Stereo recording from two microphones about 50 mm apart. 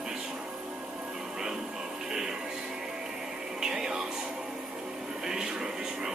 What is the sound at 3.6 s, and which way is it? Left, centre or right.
Music, centre.